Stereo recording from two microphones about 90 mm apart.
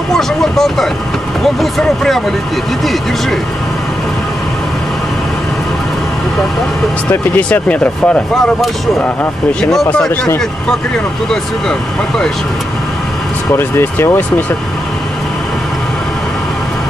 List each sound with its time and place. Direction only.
0.1 s speech: 5° left (ahead or behind)
7.1 s speech: 15° left (ahead or behind)
13.6 s speech: 25° left (ahead or behind)